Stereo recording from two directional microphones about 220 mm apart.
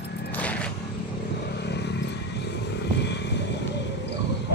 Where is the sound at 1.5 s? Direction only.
50° left (ahead or behind).